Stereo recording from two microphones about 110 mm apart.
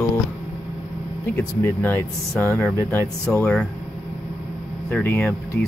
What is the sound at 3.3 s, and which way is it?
Speech, 10° left (ahead or behind).